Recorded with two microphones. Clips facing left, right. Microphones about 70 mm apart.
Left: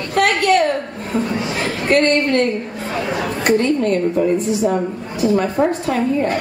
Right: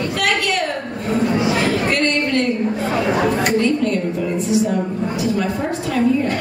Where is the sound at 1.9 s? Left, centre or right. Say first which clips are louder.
Left 4 dB; left.